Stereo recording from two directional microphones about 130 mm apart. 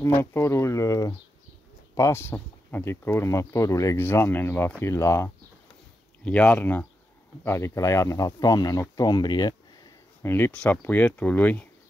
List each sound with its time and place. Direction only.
0.2 s speech: 20° left (ahead or behind)
6.2 s speech: 10° left (ahead or behind); by 9.6 s 35° left (ahead or behind)
10.2 s speech: 15° left (ahead or behind)